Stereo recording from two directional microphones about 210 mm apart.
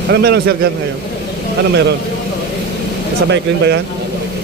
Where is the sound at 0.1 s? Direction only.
50° right (ahead or behind).